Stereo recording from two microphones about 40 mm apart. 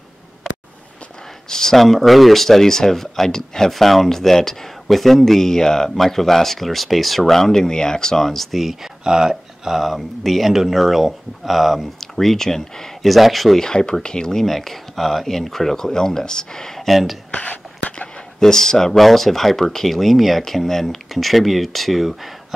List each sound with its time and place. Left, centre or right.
1.5 s speech: centre
9.0 s speech: centre
9.3 s speech: centre
13.1 s speech: centre
13.6 s speech: centre
14.4 s speech: centre
17.3 s a sound: left
18.4 s speech: centre